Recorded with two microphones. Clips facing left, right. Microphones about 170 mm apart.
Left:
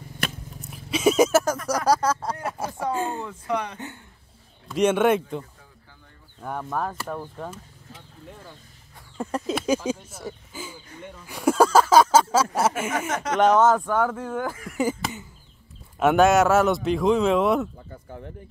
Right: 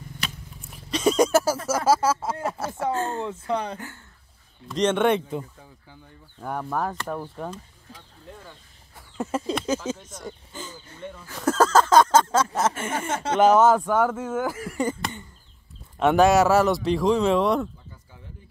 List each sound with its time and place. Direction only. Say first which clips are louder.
0.2 s biting: left 5 dB; 50° left (ahead or behind)
0.7 s a sound: left 1 dB; 5° left (ahead or behind)
1.9 s speech: right 1 dB; 5° right (ahead or behind)
2.5 s speech: right 1 dB; 15° left (ahead or behind)
3.3 s speech: right 1 dB; 30° right (ahead or behind)
4.6 s speech: left 1 dB; 5° left (ahead or behind)
6.4 s speech: right 1 dB; centre (ahead or behind)
8.9 s a sound: right 1 dB; 5° right (ahead or behind)
12.9 s speech: even; 30° right (ahead or behind)
13.4 s speech: right 1 dB; 10° right (ahead or behind)
14.8 s cough: left 3 dB; 5° left (ahead or behind)
16.0 s speech: even; centre (ahead or behind)
17.7 s a sound: left 10 dB; 55° left (ahead or behind)